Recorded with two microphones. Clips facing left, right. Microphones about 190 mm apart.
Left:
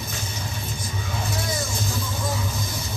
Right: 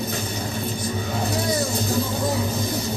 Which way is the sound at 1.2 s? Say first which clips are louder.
Right 6 dB; 35° right (ahead or behind).